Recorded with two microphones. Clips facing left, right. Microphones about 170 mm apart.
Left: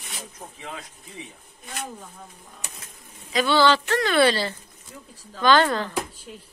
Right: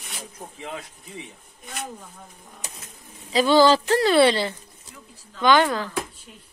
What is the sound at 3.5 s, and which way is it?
Speech, 40° right (ahead or behind).